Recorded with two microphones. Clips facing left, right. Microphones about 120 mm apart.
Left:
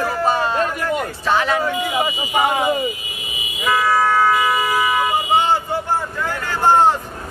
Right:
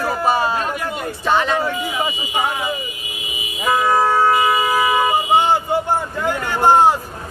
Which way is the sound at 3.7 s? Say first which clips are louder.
Right 1 dB; 25° right (ahead or behind).